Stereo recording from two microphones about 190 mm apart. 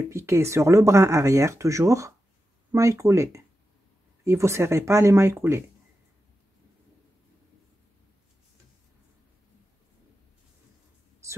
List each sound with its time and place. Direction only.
0.1 s speech: 15° right (ahead or behind)